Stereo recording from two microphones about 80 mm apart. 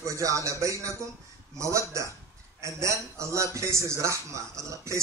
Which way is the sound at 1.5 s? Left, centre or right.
Right.